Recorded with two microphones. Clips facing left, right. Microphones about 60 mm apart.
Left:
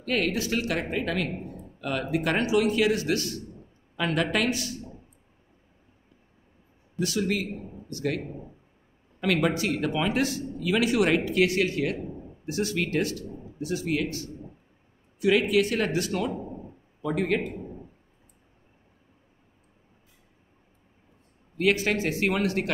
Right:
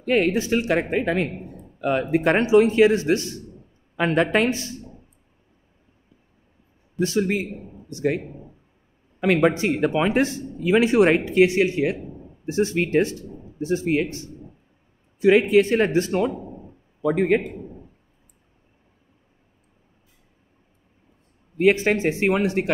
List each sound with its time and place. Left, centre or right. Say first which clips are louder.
0.0 s speech: right 7 dB; right
7.0 s speech: right 5 dB; right
7.5 s a man's voice: right 1 dB; centre
7.9 s speech: right 6 dB; right
8.2 s speech: left 1 dB; centre
9.3 s speech: right 6 dB; right
16.3 s a sound: even; centre
17.0 s speech: right 6 dB; right
21.5 s speech: right 6 dB; right